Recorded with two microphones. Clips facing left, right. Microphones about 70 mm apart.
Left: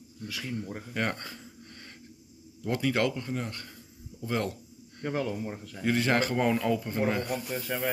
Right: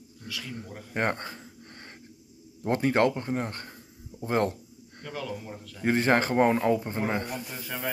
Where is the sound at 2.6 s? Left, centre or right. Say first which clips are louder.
Right 4 dB; right.